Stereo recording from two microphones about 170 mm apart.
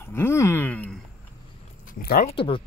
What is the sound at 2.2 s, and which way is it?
Speech, 30° left (ahead or behind).